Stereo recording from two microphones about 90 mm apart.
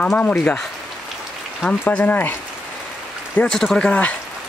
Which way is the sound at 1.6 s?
15° left (ahead or behind).